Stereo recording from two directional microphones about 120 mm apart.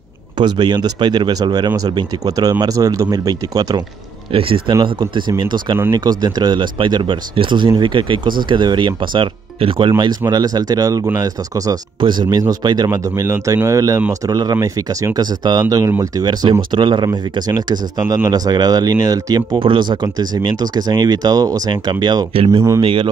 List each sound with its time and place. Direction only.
0.4 s speech: 40° right (ahead or behind)
4.3 s a man's voice: 50° right (ahead or behind)
22.3 s a man's voice: 50° right (ahead or behind)